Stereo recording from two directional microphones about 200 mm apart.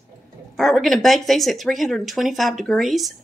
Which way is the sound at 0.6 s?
Centre (ahead or behind).